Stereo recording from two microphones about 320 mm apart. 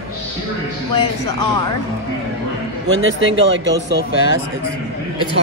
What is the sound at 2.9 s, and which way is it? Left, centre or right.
Speech, right.